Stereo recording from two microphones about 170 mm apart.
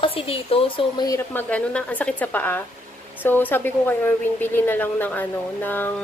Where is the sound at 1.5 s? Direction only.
5° left (ahead or behind).